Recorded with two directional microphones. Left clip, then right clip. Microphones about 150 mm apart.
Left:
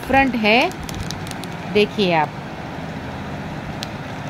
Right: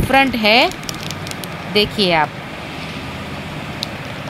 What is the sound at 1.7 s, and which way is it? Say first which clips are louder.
Speech: right 2 dB; 5° left (ahead or behind).